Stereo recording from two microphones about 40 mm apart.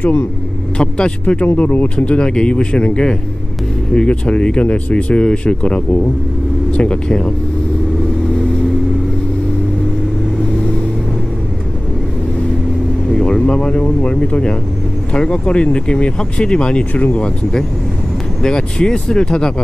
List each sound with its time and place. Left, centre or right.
0.7 s speech: left
13.1 s vehicle: centre
13.5 s speech: left
16.9 s speech: left
17.2 s speech: centre